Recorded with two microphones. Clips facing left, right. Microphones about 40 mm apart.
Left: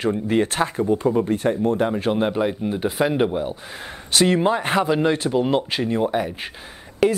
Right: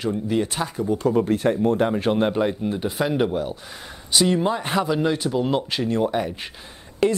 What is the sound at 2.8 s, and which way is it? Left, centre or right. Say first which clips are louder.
Speech: left 3 dB; centre.